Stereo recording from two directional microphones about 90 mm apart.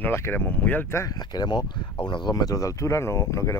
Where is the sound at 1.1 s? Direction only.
50° left (ahead or behind).